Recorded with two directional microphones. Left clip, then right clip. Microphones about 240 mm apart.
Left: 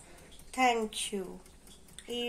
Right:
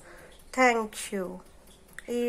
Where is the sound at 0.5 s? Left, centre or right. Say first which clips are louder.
Right 5 dB; right.